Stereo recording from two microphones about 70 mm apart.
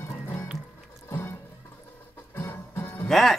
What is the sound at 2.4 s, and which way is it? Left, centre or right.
Music, left.